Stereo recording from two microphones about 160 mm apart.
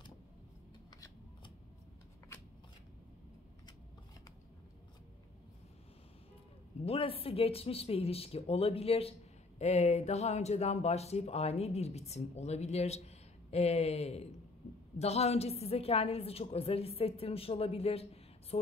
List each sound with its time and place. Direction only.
6.9 s speech: 35° left (ahead or behind)